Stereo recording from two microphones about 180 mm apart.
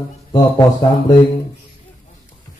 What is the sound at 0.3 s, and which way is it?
Speech, 20° left (ahead or behind).